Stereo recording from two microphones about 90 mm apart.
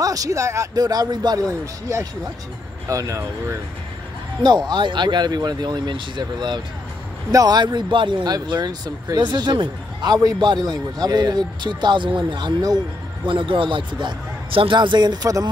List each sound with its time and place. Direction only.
0.0 s speech: 40° right (ahead or behind)
1.5 s speech: 35° right (ahead or behind)
4.4 s speech: 50° right (ahead or behind)
7.2 s speech: 45° right (ahead or behind)
13.3 s speech: 75° right (ahead or behind); by 15.3 s 55° right (ahead or behind)